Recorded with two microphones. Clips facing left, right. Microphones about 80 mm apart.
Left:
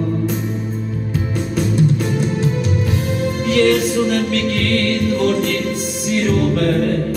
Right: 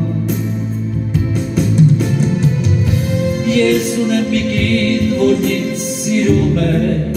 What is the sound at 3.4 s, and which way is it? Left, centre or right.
Music, left.